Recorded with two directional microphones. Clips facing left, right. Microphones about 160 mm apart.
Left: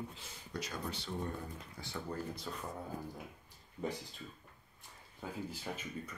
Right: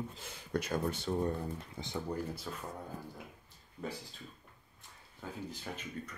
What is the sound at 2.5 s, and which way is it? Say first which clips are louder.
Speech: right 1 dB; 5° right (ahead or behind).